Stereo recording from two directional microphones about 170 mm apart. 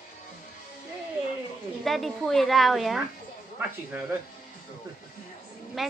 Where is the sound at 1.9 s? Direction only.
Centre (ahead or behind).